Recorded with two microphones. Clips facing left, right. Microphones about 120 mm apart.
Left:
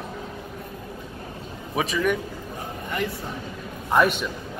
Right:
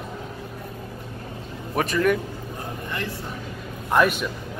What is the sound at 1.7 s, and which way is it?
Speech, centre (ahead or behind).